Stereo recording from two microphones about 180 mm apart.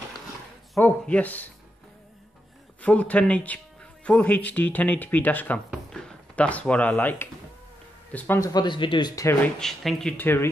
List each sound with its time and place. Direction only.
0.7 s speech: 10° left (ahead or behind)
2.8 s speech: 5° left (ahead or behind)
5.7 s a sound: 5° left (ahead or behind)
8.1 s speech: 10° left (ahead or behind)
9.6 s speech: centre (ahead or behind)